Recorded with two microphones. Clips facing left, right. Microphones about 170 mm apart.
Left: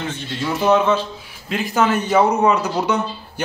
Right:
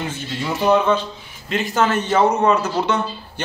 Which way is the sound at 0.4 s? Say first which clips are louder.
Left 1 dB; centre (ahead or behind).